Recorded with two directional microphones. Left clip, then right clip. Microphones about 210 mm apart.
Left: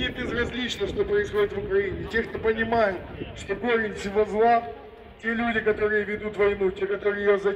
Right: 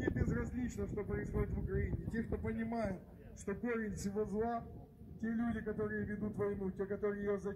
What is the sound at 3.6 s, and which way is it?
Speech, 35° right (ahead or behind).